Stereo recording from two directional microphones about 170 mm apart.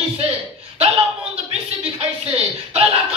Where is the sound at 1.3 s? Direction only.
35° right (ahead or behind).